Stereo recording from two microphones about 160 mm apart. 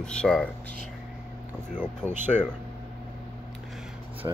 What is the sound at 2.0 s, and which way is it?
Speech, 15° right (ahead or behind).